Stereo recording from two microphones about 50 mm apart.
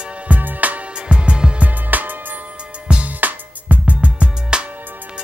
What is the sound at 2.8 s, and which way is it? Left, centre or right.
Music, right.